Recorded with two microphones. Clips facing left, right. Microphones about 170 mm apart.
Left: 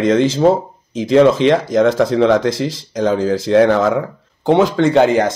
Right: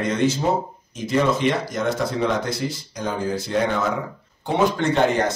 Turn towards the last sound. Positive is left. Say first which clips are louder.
# left 7 dB
turn(degrees=90)